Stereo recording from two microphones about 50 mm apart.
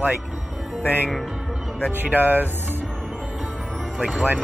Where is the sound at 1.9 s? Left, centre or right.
Right.